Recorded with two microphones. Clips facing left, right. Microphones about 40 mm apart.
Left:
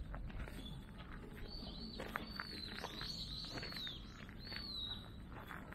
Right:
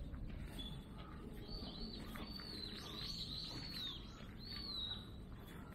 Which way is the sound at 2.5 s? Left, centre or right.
Left.